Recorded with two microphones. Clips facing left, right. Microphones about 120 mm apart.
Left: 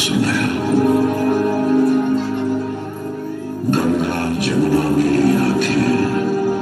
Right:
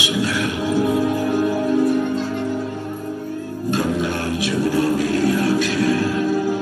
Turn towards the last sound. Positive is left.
turn(degrees=55)  # may be behind; listen again after turning